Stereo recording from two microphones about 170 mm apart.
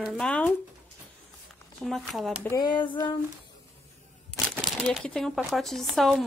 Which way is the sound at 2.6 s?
25° left (ahead or behind).